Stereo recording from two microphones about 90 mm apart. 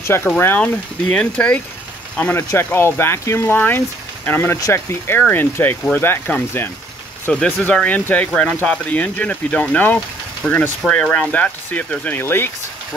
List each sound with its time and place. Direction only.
0.0 s speech: 25° left (ahead or behind)
2.3 s speech: 25° left (ahead or behind)
10.4 s speech: 5° left (ahead or behind); by 12.4 s 25° left (ahead or behind)